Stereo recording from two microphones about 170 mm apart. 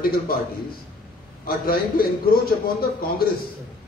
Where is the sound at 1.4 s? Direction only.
60° left (ahead or behind).